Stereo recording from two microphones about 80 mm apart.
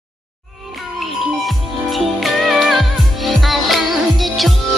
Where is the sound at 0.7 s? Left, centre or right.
Centre.